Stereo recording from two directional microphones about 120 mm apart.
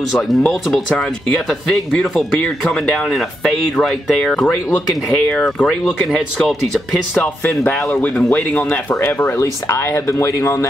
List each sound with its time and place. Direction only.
0.1 s speech: centre (ahead or behind)
7.2 s speech: 15° left (ahead or behind)